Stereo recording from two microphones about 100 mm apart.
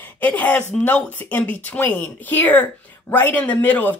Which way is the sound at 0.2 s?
15° left (ahead or behind).